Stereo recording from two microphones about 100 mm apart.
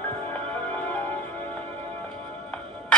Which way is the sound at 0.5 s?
15° left (ahead or behind).